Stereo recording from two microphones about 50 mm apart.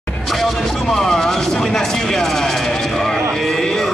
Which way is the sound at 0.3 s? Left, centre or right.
Centre.